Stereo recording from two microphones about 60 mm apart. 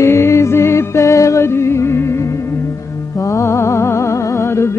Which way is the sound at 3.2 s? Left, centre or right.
Left.